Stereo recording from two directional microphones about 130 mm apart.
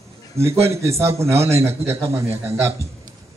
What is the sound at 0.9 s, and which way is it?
A man's voice, 20° right (ahead or behind).